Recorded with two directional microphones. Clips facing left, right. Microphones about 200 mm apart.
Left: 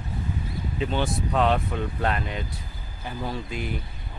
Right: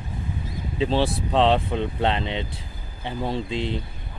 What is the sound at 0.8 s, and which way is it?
Speech, 30° right (ahead or behind).